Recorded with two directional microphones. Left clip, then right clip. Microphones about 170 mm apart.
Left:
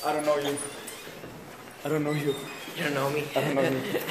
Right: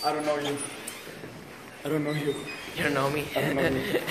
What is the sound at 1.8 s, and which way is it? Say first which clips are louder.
Speech: left 1 dB; 50° left (ahead or behind).